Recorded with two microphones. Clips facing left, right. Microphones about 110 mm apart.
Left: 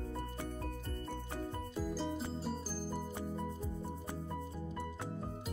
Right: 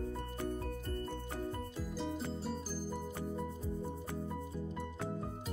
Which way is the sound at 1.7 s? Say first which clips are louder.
Left 2 dB; centre (ahead or behind).